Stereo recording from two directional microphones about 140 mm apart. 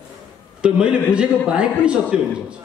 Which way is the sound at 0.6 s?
5° right (ahead or behind).